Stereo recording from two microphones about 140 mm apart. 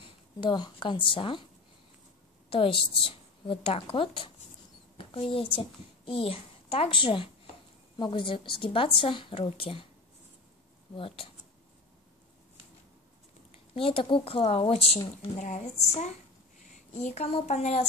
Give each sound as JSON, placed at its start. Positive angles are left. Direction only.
{"t": 0.0, "sound": "speech", "side_deg": 35}
{"t": 2.5, "sound": "a woman's voice", "side_deg": 40}
{"t": 4.9, "sound": "a sound", "side_deg": 40}
{"t": 5.6, "sound": "a child's voice", "side_deg": 40}
{"t": 11.0, "sound": "a woman's voice", "side_deg": 40}
{"t": 13.7, "sound": "a woman's voice", "side_deg": 40}
{"t": 15.3, "sound": "speech", "side_deg": 65}
{"t": 16.9, "sound": "speech", "side_deg": 55}